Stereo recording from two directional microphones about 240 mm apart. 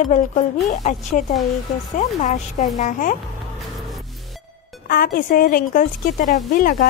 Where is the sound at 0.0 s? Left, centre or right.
Left.